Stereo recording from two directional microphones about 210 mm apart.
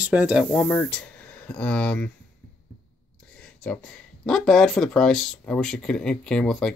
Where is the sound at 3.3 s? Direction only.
5° left (ahead or behind).